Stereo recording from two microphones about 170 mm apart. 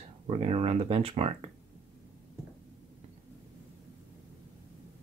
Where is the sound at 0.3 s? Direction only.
35° right (ahead or behind).